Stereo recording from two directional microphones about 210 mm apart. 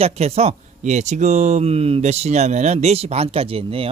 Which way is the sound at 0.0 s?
30° right (ahead or behind).